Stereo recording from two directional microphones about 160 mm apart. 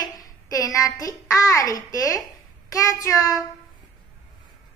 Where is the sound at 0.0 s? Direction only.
25° left (ahead or behind).